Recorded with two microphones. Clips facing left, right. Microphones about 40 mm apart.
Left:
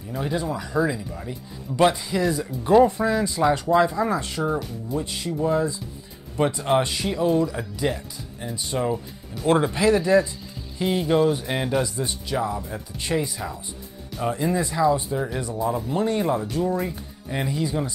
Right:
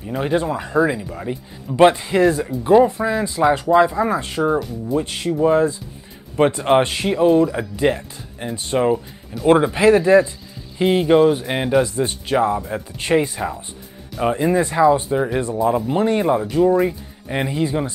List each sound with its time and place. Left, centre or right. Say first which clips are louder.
0.0 s speech: right 7 dB; right
2.5 s speech: even; centre; by 8.9 s right
9.5 s speech: right 6 dB; right
9.8 s speech: right 6 dB; right
11.9 s speech: right 7 dB; right